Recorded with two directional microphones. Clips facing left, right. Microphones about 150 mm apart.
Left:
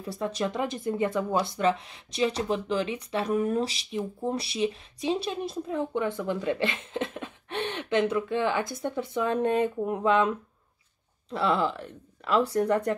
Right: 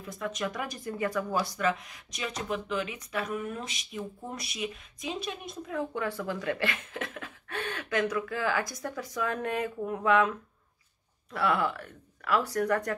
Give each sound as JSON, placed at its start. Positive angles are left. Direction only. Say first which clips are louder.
{"t": 0.0, "sound": "speech", "louder": "left 4 dB", "side_deg": 35}